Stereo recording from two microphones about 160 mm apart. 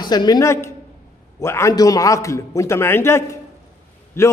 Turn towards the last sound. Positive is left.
turn(degrees=15)  # may be behind; listen again after turning